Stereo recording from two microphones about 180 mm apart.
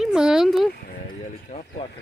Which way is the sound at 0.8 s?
45° left (ahead or behind).